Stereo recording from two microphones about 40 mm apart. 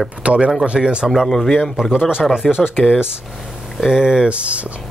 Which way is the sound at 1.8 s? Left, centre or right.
Centre.